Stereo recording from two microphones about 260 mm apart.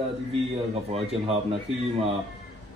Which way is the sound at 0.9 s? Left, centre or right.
Right.